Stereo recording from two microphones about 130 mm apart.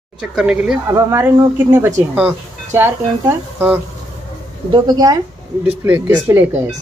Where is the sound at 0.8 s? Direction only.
20° right (ahead or behind).